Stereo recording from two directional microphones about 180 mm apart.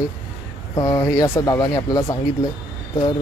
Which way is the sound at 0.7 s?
20° left (ahead or behind).